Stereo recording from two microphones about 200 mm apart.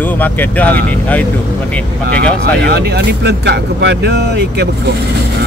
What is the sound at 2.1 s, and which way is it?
Speech, 50° right (ahead or behind).